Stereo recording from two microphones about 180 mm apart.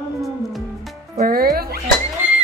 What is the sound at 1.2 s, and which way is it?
Speech, 55° right (ahead or behind).